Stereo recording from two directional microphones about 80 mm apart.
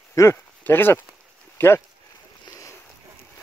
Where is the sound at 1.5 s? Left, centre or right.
Left.